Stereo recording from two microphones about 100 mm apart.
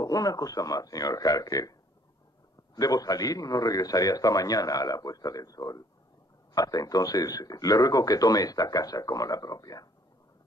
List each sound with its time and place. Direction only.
0.0 s speech: 35° left (ahead or behind)